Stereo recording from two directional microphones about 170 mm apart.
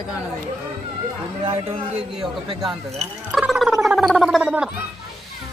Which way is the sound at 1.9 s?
5° right (ahead or behind).